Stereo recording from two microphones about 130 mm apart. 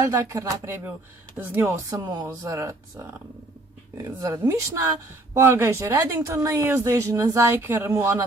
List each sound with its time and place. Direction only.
0.0 s speech: 20° right (ahead or behind)
2.0 s speech: 30° right (ahead or behind)